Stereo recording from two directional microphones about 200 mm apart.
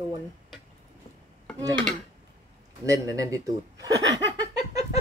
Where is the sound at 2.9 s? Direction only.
15° right (ahead or behind).